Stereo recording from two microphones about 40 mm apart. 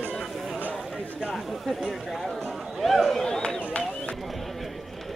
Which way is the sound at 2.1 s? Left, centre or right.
Centre.